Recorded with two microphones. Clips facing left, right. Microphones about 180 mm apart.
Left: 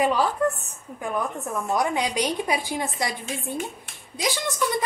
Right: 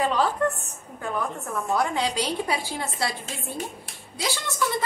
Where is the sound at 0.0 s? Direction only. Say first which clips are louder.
Left 1 dB; 10° left (ahead or behind).